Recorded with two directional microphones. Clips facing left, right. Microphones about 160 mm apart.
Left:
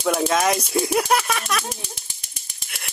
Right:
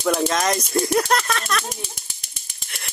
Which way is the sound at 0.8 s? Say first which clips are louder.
Even; 10° left (ahead or behind).